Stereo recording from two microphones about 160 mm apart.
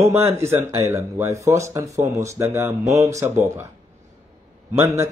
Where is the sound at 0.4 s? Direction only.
15° right (ahead or behind).